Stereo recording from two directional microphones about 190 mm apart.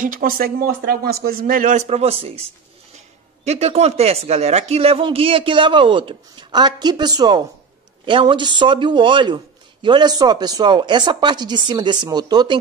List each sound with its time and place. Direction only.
0.0 s speech: 45° right (ahead or behind)
3.4 s a man's voice: 35° right (ahead or behind)